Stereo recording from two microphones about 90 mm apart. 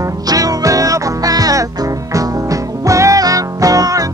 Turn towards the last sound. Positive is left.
turn(degrees=-40)  # may be behind; listen again after turning